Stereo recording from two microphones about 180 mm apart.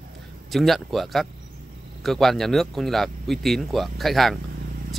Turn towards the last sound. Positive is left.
turn(degrees=0)  # may be behind; listen again after turning